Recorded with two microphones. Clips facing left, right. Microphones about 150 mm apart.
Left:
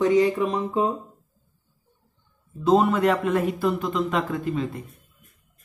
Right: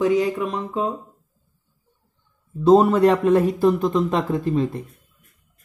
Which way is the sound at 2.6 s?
35° right (ahead or behind).